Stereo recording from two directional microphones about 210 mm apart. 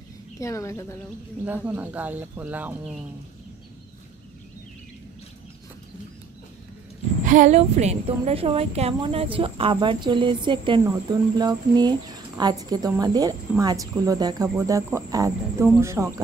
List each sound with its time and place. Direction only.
0.4 s a woman's voice: 15° left (ahead or behind)
1.4 s speech: 10° right (ahead or behind)
7.2 s a woman's voice: 35° right (ahead or behind); by 16.1 s 15° right (ahead or behind)